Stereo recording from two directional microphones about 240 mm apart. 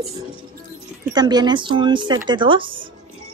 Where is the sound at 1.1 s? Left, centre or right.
Centre.